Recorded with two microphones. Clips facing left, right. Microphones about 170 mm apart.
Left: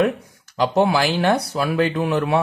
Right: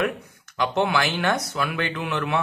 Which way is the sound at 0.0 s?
35° left (ahead or behind).